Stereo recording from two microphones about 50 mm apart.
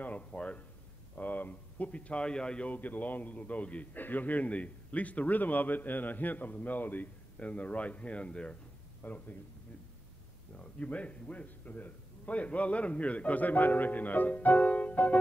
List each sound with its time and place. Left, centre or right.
0.0 s a sound: left
1.1 s speech: left; by 2.7 s centre
2.7 s a man's voice: left
9.0 s a man's voice: left
10.5 s a man's voice: left